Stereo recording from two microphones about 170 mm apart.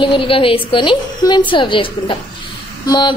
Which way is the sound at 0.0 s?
30° left (ahead or behind).